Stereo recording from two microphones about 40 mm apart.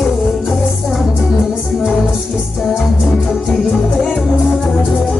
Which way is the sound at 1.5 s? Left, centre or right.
Centre.